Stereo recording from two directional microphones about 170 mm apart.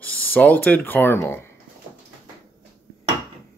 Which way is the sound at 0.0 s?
10° left (ahead or behind).